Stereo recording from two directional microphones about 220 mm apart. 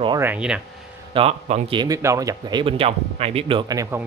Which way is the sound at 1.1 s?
25° right (ahead or behind).